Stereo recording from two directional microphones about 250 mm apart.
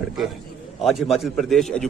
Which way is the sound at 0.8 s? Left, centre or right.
Centre.